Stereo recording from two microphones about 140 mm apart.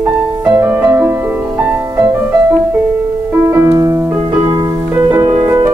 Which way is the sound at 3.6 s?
25° right (ahead or behind).